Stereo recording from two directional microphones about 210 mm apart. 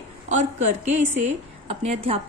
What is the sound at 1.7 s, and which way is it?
Speech, 30° right (ahead or behind).